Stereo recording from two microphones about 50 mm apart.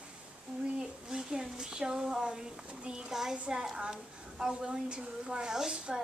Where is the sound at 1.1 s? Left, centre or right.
Centre.